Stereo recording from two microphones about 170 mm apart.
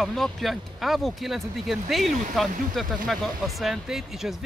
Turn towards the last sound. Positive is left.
turn(degrees=0)  # may be behind; listen again after turning